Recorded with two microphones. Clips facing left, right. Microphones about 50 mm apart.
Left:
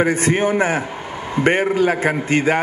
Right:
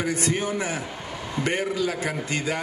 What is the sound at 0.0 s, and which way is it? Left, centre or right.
A man's voice, left.